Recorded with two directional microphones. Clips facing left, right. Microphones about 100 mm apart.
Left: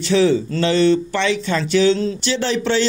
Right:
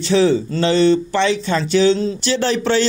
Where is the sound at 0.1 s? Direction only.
30° right (ahead or behind).